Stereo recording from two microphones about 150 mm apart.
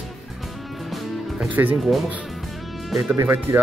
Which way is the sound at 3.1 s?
15° right (ahead or behind).